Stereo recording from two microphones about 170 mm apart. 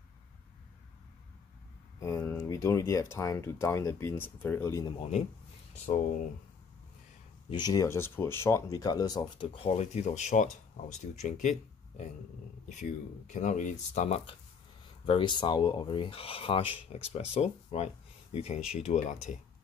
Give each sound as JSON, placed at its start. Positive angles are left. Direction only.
{"t": 2.0, "sound": "speech", "side_deg": 20}
{"t": 7.4, "sound": "speech", "side_deg": 25}
{"t": 12.6, "sound": "speech", "side_deg": 45}